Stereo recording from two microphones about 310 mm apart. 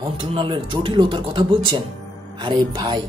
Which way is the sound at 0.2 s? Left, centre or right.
Centre.